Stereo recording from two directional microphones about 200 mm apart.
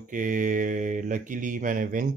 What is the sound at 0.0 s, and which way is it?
Mantra, 40° right (ahead or behind).